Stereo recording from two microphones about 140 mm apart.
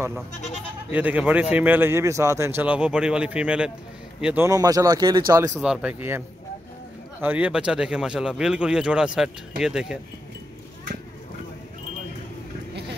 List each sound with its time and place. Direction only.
0.9 s a man's voice: 10° right (ahead or behind)
4.5 s speech: 25° right (ahead or behind)
5.6 s a man's voice: 5° right (ahead or behind)